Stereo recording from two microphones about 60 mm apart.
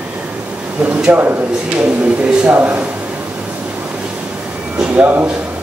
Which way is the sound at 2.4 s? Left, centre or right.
Right.